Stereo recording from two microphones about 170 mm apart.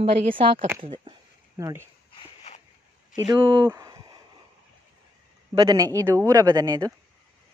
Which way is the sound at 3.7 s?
20° right (ahead or behind).